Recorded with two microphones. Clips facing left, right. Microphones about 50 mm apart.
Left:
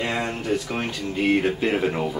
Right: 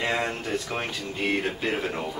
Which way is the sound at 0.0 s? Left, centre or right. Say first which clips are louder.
Left 1 dB; centre.